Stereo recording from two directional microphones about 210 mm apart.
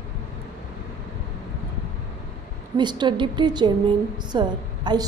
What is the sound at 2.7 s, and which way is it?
A woman's voice, 20° right (ahead or behind).